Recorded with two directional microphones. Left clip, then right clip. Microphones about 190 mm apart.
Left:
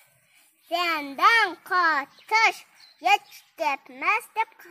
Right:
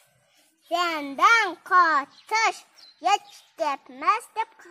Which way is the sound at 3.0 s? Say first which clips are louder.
Left 1 dB; 35° left (ahead or behind).